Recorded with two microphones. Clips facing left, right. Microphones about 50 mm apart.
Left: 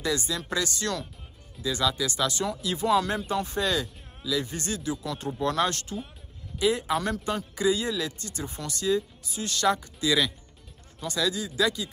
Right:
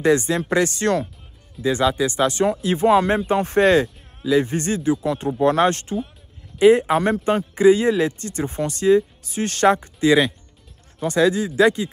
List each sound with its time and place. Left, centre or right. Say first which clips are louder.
0.0 s a man's voice: right 11 dB; right